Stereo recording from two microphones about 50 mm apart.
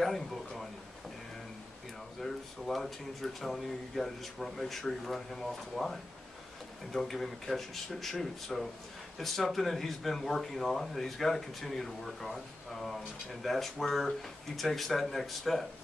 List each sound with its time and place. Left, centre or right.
0.0 s speech: centre
2.2 s speech: centre